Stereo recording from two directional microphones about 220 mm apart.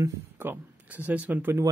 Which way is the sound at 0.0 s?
10° right (ahead or behind).